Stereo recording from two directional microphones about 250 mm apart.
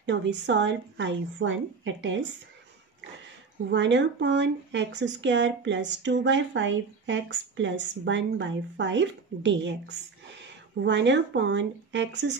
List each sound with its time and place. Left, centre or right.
0.0 s speech: right
3.7 s speech: right